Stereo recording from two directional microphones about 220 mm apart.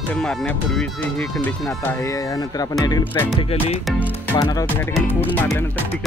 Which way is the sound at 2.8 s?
15° left (ahead or behind).